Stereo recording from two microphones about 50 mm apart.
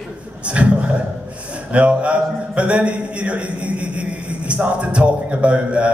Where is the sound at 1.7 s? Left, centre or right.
Right.